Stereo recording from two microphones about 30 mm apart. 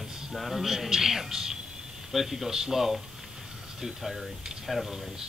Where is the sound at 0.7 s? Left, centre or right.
Centre.